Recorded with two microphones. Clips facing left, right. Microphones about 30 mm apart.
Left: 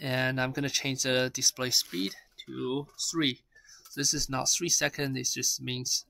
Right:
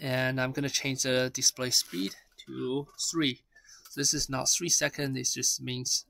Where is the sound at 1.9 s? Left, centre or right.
Centre.